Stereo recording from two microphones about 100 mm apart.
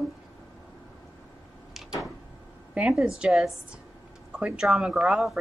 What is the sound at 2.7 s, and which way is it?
A woman's voice, 10° right (ahead or behind).